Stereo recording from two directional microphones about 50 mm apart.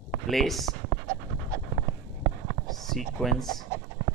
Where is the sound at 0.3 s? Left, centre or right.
Centre.